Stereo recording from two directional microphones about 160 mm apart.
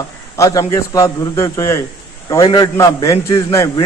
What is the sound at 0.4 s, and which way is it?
A man's voice, 20° left (ahead or behind).